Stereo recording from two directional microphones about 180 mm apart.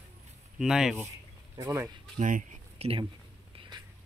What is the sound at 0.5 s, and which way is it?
Speech, 5° right (ahead or behind).